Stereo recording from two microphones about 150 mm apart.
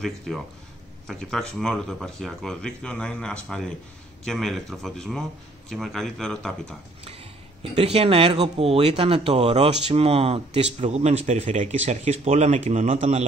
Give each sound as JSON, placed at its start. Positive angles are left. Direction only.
{"t": 0.3, "sound": "speech", "side_deg": 0}
{"t": 7.7, "sound": "speech", "side_deg": -40}